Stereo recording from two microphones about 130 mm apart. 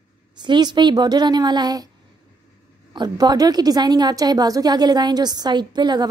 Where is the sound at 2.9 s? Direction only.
35° right (ahead or behind).